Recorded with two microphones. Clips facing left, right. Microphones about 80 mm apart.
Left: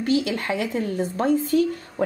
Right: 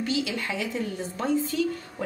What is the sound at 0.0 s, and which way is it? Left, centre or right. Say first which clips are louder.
A woman's voice: left 6 dB; left.